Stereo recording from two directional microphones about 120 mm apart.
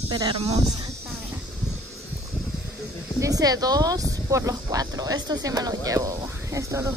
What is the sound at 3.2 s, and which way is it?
Speech, 30° right (ahead or behind).